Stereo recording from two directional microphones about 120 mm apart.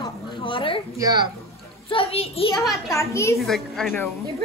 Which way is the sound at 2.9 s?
25° left (ahead or behind).